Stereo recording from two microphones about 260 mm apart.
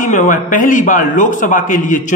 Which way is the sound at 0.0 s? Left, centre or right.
Left.